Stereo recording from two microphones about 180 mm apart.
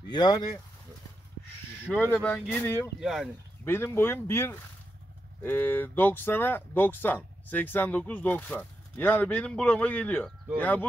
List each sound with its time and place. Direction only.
0.1 s speech: 25° left (ahead or behind)
2.1 s speech: 10° left (ahead or behind)
3.0 s speech: centre (ahead or behind)
3.6 s speech: 15° left (ahead or behind)